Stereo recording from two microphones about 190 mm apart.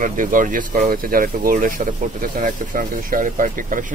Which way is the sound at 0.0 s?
45° right (ahead or behind).